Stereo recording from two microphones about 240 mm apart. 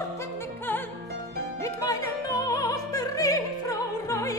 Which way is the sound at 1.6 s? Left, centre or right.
Centre.